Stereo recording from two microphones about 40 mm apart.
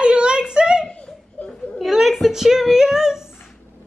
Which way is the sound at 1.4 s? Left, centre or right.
Left.